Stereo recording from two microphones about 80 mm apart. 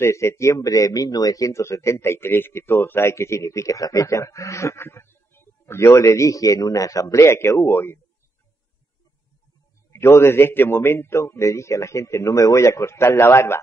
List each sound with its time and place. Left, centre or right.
0.0 s speech: left
9.9 s speech: left